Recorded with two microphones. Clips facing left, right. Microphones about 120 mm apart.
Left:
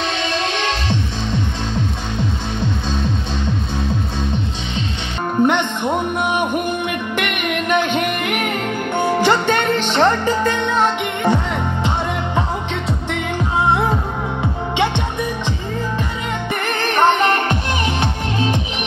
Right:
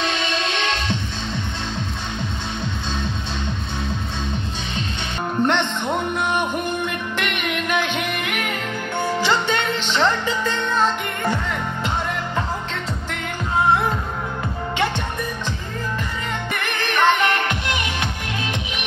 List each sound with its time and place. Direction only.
5.4 s music: 10° left (ahead or behind)
7.2 s music: 55° left (ahead or behind)
10.6 s music: 20° left (ahead or behind)
16.6 s music: 40° left (ahead or behind)